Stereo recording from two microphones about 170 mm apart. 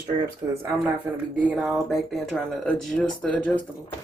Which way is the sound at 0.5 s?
15° right (ahead or behind).